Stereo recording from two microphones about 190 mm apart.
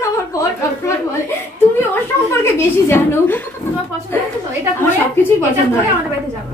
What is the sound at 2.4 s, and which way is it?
Speech, 10° left (ahead or behind).